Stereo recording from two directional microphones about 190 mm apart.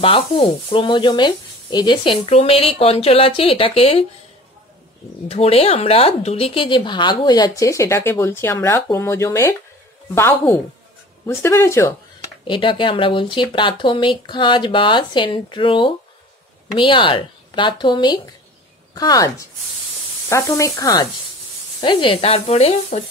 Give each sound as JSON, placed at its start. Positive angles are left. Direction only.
{"t": 0.0, "sound": "speech", "side_deg": 30}
{"t": 5.3, "sound": "speech", "side_deg": 30}
{"t": 11.2, "sound": "speech", "side_deg": 15}
{"t": 12.4, "sound": "speech", "side_deg": 25}